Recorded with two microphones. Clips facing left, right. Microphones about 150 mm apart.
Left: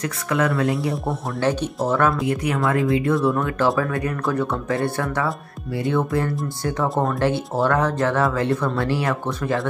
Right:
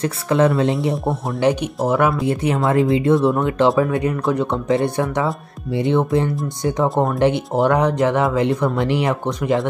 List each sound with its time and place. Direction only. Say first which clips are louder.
0.0 s speech: right 5 dB; 25° right (ahead or behind)
1.9 s speech: right 3 dB; 15° right (ahead or behind)
2.2 s speech: right 3 dB; 25° right (ahead or behind)